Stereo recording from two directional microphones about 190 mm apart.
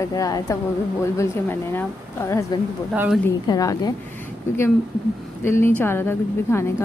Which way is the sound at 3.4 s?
20° left (ahead or behind).